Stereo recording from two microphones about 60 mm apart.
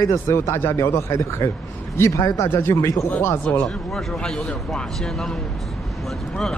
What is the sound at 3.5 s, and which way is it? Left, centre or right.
A man's voice, centre.